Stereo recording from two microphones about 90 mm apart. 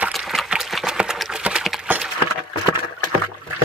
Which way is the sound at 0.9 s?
5° right (ahead or behind).